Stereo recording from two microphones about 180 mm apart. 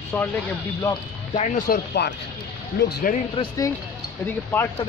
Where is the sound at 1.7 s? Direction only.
65° left (ahead or behind).